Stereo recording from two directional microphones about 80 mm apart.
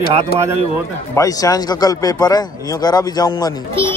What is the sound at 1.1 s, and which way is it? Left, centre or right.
A man's voice, left.